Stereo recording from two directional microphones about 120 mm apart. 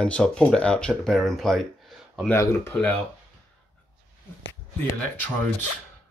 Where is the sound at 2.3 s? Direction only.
20° left (ahead or behind).